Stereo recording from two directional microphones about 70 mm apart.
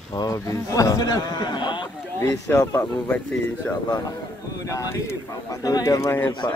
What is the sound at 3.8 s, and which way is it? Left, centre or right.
Speech, left.